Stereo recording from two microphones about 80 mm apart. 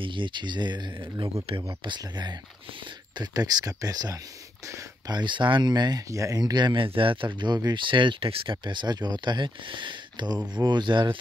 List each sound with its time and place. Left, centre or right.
0.0 s speech: right
3.2 s speech: right
4.6 s a sound: right
5.1 s speech: right
6.0 s speech: right
6.6 s speech: right